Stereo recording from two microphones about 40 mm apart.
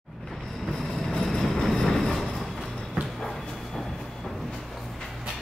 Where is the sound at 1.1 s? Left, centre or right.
Centre.